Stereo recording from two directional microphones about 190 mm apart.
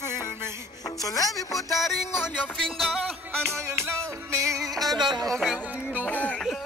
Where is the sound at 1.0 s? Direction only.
20° left (ahead or behind); by 3.1 s centre (ahead or behind).